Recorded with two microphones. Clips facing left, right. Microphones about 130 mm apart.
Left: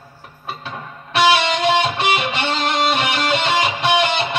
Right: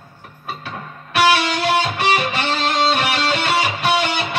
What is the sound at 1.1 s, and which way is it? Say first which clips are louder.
Music: left 1 dB; 20° left (ahead or behind).